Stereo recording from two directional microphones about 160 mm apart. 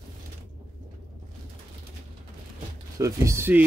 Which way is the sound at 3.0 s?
20° right (ahead or behind).